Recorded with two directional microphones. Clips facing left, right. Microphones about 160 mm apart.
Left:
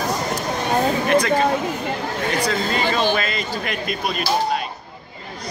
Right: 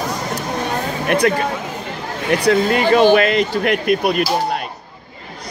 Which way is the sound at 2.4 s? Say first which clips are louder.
Right 10 dB; 60° right (ahead or behind).